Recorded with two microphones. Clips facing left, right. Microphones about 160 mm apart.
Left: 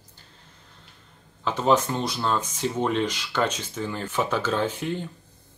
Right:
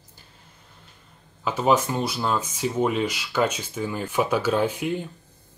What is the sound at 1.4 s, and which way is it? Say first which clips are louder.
Speech: even; 10° right (ahead or behind).